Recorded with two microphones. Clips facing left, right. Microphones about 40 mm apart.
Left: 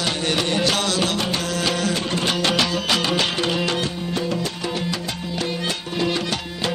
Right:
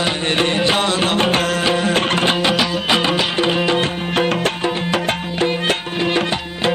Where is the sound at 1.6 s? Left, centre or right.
Right.